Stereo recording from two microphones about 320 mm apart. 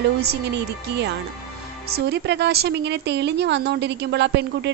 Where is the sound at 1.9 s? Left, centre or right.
Right.